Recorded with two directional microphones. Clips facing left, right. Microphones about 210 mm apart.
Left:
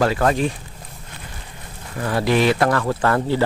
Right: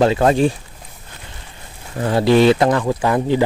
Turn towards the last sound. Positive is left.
turn(degrees=-15)  # may be behind; listen again after turning